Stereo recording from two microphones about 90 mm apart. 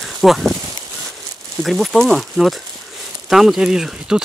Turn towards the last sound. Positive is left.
turn(degrees=-5)  # may be behind; listen again after turning